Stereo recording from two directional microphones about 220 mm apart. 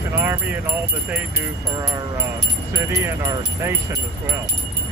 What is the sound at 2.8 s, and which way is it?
Speech, 10° right (ahead or behind).